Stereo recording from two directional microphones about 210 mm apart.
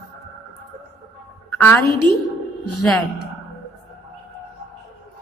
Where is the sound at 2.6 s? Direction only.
90° left.